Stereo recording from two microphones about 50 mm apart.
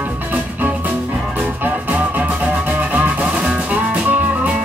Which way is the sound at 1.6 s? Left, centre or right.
Right.